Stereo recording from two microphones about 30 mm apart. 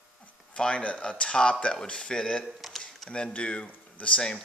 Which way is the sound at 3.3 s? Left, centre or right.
Left.